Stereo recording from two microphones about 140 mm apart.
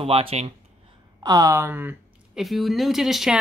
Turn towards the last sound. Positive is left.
turn(degrees=0)  # may be behind; listen again after turning